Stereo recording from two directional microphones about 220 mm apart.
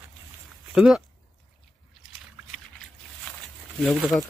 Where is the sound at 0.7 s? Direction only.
5° right (ahead or behind).